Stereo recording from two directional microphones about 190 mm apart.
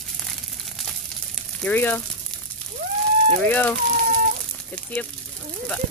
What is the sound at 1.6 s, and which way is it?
Speech, 10° left (ahead or behind).